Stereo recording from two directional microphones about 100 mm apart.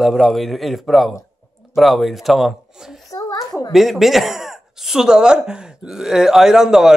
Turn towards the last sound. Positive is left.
turn(degrees=-5)  # may be behind; listen again after turning